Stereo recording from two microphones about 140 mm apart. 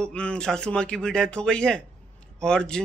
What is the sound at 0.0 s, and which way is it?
Speech, 10° left (ahead or behind).